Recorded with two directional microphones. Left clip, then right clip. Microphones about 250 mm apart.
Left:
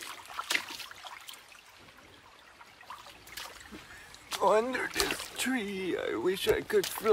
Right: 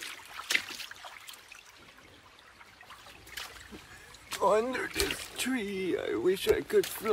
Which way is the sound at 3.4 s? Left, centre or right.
Centre.